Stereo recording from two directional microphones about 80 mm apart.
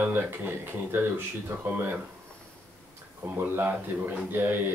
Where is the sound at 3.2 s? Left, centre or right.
Right.